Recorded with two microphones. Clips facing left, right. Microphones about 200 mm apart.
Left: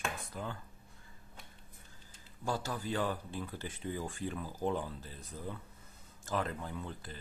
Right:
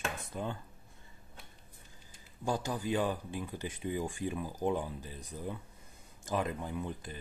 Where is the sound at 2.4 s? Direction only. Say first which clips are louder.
Right 3 dB; 15° right (ahead or behind).